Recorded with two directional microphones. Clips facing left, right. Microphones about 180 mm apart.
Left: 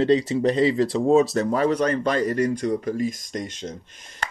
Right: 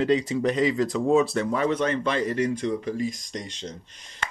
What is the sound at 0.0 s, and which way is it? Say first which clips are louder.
Speech: left 3 dB; 35° left (ahead or behind).